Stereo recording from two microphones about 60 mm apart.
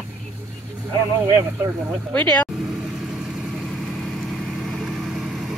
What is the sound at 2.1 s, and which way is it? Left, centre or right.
Speech, left.